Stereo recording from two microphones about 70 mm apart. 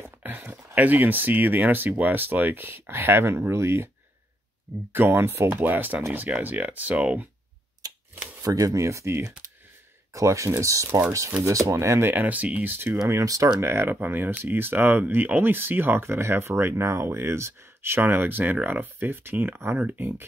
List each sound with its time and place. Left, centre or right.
0.0 s speech: right
4.9 s speech: right
5.5 s speech: right
8.4 s speech: right
12.1 s speech: right
12.7 s speech: right
13.1 s speech: right
13.6 s speech: right